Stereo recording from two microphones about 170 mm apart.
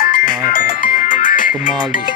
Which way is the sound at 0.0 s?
55° left (ahead or behind).